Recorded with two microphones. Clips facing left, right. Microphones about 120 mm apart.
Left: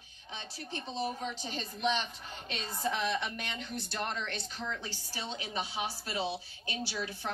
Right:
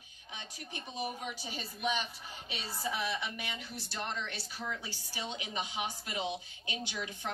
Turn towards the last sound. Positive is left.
turn(degrees=-20)  # may be behind; listen again after turning